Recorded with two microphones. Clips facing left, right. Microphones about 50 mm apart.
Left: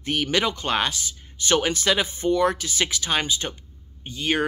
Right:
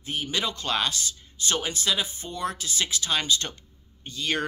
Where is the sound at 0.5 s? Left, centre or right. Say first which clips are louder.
Left 3 dB; left.